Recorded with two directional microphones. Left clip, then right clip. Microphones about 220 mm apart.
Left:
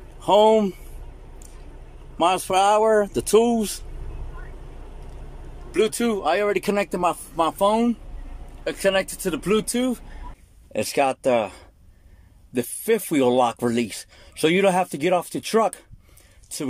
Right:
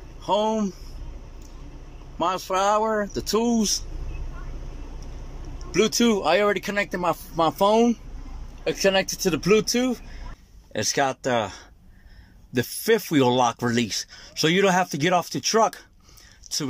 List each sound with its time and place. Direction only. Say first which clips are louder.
0.2 s speech: left 7 dB; 15° left (ahead or behind)
2.1 s speech: left 4 dB; 10° left (ahead or behind)
5.7 s speech: right 1 dB; centre (ahead or behind)
6.5 s speech: left 2 dB; 15° left (ahead or behind)
7.3 s speech: right 2 dB; centre (ahead or behind)